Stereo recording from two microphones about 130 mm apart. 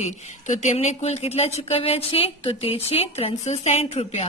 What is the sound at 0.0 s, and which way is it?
Speech, 65° left (ahead or behind).